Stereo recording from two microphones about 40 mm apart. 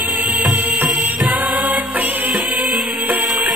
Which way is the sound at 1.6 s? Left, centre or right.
Right.